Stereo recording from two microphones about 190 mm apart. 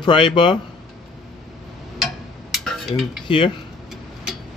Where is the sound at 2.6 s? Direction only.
Centre (ahead or behind).